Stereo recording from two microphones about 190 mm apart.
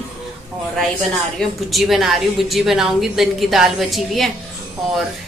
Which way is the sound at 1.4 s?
Centre (ahead or behind).